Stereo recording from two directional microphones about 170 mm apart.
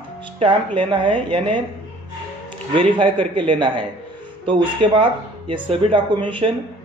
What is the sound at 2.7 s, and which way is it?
Speech, 30° right (ahead or behind).